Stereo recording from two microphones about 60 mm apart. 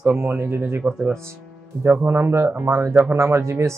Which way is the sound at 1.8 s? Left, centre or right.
Right.